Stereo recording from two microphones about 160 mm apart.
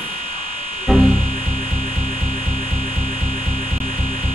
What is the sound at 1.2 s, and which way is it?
Music, 60° right (ahead or behind).